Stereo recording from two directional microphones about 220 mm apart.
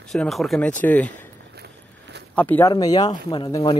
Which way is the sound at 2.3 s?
5° left (ahead or behind).